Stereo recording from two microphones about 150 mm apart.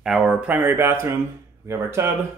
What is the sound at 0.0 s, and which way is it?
Speech, 5° right (ahead or behind).